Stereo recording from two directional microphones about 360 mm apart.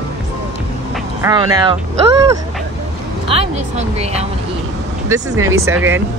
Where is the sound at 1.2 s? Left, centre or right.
Centre.